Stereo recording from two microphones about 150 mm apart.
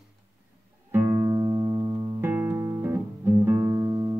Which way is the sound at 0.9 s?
20° right (ahead or behind).